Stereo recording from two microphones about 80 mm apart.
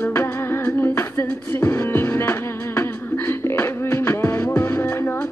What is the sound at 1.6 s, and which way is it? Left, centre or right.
Music, left.